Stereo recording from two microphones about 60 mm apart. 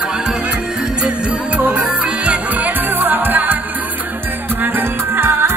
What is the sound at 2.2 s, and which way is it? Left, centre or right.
Music, right.